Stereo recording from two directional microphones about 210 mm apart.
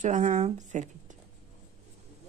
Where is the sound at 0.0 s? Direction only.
35° right (ahead or behind).